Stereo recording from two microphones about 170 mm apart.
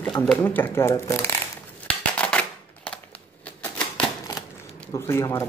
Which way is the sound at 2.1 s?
5° left (ahead or behind).